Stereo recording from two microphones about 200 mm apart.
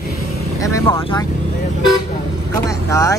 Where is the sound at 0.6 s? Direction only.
15° left (ahead or behind).